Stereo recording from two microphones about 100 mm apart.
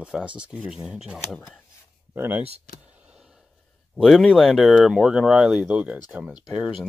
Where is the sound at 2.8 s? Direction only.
10° right (ahead or behind).